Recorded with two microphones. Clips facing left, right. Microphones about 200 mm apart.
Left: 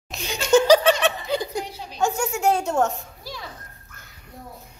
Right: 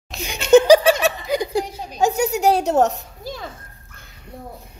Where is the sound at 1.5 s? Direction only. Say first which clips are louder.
Right 7 dB; 40° right (ahead or behind).